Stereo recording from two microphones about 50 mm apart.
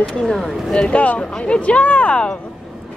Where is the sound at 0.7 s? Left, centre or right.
Left.